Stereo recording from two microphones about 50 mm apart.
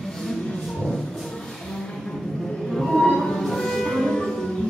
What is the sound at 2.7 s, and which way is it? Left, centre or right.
Music, centre.